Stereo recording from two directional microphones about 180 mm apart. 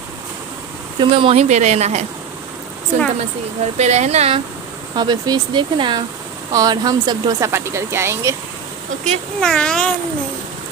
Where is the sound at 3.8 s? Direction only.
40° right (ahead or behind).